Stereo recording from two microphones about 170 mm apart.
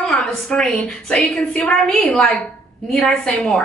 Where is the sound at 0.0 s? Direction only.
5° left (ahead or behind).